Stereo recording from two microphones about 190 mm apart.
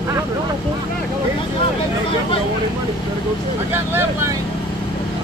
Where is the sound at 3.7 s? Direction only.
10° right (ahead or behind).